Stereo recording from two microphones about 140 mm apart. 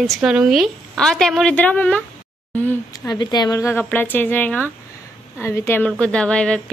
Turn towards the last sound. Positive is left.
turn(degrees=5)  # may be behind; listen again after turning